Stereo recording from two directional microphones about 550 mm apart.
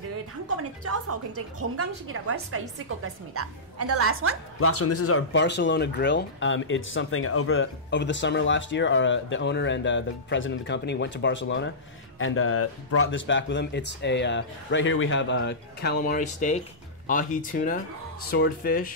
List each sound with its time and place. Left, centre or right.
0.8 s a woman's voice: right
4.6 s speech: left